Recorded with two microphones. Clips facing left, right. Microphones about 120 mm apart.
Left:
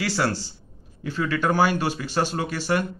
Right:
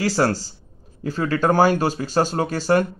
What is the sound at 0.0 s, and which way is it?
Speech, 40° right (ahead or behind).